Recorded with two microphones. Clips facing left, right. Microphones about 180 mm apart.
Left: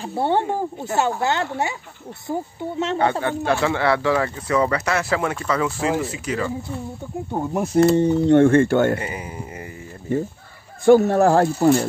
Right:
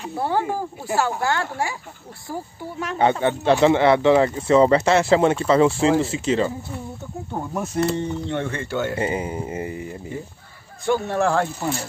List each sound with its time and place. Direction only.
0.0 s speech: 25° left (ahead or behind)
3.0 s speech: 20° right (ahead or behind)
7.3 s speech: 20° left (ahead or behind)
7.7 s speech: 35° left (ahead or behind)
8.4 s speech: 50° left (ahead or behind)
9.0 s speech: 25° right (ahead or behind)
10.9 s speech: 40° left (ahead or behind)